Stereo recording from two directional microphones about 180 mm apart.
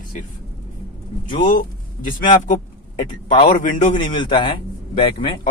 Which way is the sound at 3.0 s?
25° left (ahead or behind).